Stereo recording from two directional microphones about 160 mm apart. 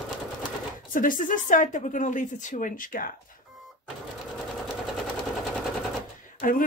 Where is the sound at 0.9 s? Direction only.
60° left (ahead or behind).